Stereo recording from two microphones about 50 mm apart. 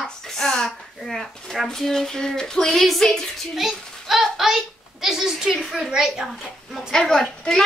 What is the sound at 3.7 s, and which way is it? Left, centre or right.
A child's voice, centre.